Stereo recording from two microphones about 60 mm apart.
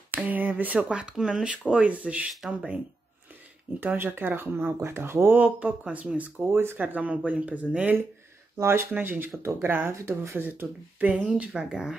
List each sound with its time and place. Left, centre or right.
0.1 s a sound: right
0.7 s speech: centre
3.8 s speech: right
5.4 s speech: right
9.9 s speech: right
10.3 s speech: right